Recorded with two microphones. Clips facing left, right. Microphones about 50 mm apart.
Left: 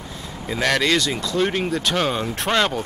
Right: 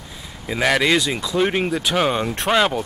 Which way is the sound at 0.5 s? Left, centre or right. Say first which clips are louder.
Right 2 dB; centre.